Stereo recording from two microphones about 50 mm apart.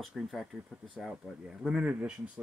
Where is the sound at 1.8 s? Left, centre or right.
Right.